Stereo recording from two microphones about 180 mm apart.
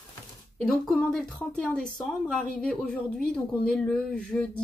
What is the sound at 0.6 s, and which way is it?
Speech, 5° left (ahead or behind).